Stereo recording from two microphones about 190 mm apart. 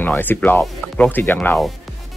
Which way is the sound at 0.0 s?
10° left (ahead or behind).